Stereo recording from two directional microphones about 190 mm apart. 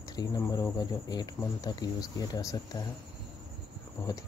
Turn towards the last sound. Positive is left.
turn(degrees=15)  # may be behind; listen again after turning